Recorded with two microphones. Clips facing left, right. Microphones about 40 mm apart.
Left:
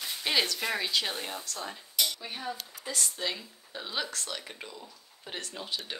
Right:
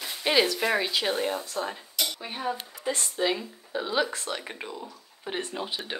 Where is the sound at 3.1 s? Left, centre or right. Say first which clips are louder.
Right 8 dB; centre.